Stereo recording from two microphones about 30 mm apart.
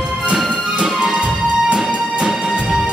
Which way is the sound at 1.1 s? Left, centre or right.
Right.